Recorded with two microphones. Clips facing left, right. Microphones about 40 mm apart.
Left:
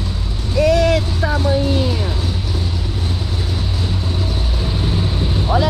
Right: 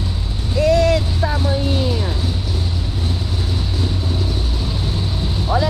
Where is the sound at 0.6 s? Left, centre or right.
Left.